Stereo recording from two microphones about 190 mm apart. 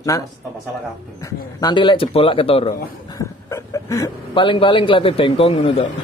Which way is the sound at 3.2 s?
15° left (ahead or behind).